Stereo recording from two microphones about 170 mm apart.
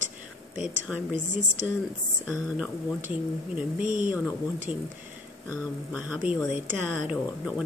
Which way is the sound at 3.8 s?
50° right (ahead or behind).